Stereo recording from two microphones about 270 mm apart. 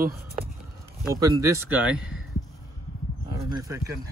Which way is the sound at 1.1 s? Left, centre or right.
Centre.